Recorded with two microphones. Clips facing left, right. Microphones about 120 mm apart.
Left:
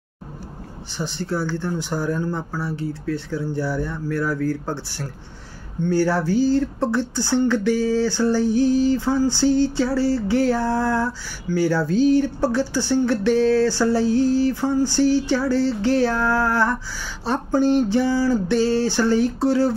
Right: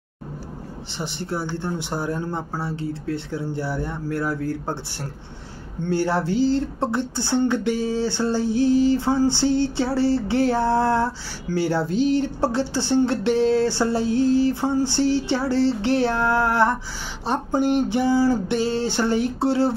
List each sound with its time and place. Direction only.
1.1 s speech: 20° right (ahead or behind)